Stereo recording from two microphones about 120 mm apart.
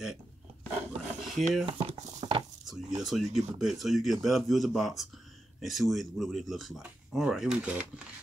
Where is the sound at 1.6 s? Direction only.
55° right (ahead or behind).